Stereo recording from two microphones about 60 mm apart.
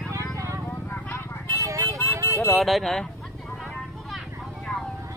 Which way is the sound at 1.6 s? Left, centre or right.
Right.